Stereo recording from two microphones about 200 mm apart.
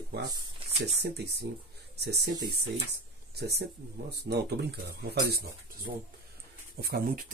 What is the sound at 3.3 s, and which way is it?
Speech, 55° right (ahead or behind).